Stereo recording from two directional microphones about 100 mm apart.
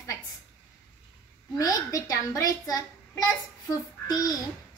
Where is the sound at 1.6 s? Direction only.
40° left (ahead or behind).